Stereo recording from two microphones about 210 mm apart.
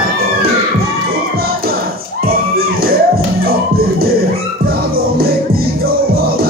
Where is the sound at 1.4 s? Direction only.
45° right (ahead or behind).